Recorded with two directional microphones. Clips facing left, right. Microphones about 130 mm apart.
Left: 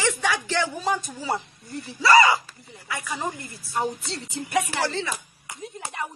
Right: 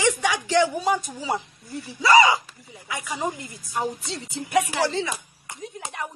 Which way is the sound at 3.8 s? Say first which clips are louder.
Even; centre (ahead or behind).